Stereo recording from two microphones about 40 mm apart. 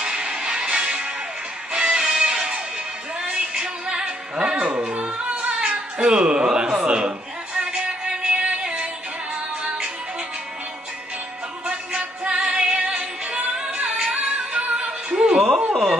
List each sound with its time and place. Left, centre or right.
0.0 s music: right
4.6 s music: right
5.7 s a sound: right
8.6 s music: right
11.6 s music: right
15.7 s a sound: centre